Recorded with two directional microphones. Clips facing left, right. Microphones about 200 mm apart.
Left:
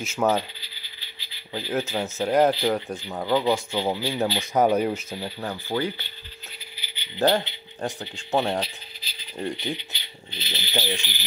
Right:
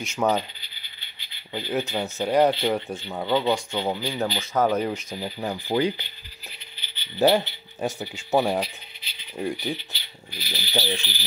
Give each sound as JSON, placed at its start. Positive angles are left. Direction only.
{"t": 0.0, "sound": "speech", "side_deg": 5}
{"t": 1.5, "sound": "speech", "side_deg": 5}
{"t": 5.1, "sound": "speech", "side_deg": -15}
{"t": 7.2, "sound": "speech", "side_deg": -10}
{"t": 8.6, "sound": "a sound", "side_deg": 35}
{"t": 9.8, "sound": "speech", "side_deg": 20}